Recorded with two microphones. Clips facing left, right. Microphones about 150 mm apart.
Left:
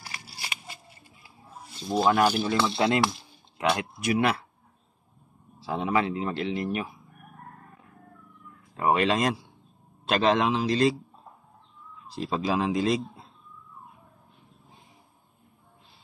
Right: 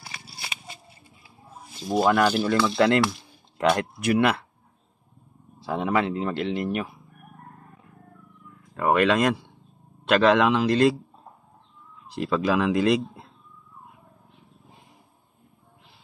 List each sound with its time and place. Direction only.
1.9 s speech: 75° right (ahead or behind)
4.0 s speech: 60° right (ahead or behind)
5.6 s speech: 55° right (ahead or behind)
8.7 s speech: 60° right (ahead or behind)
12.1 s speech: 65° right (ahead or behind)